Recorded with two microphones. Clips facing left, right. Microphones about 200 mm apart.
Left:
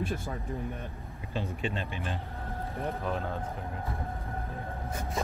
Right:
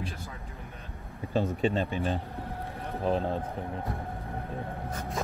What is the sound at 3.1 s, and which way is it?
Speech, 30° right (ahead or behind).